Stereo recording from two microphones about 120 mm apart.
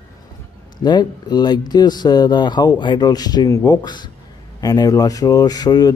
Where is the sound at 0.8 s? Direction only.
35° left (ahead or behind).